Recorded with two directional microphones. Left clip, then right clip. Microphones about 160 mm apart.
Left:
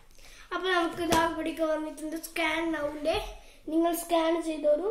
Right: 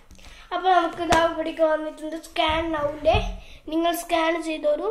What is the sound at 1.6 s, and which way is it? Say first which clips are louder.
A woman's voice: right 9 dB; 25° left (ahead or behind).